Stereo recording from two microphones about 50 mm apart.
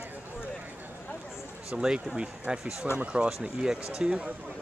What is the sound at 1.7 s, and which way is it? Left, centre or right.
Speech, centre.